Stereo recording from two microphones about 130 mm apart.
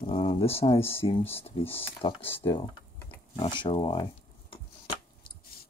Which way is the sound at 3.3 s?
40° left (ahead or behind).